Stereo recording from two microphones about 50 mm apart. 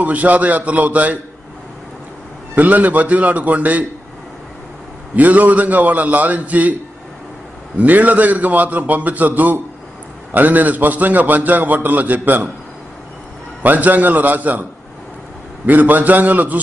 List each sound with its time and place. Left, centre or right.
0.0 s a man's voice: right
2.5 s a man's voice: right
5.1 s a man's voice: right
7.8 s a man's voice: right
13.6 s a man's voice: right
15.6 s a man's voice: right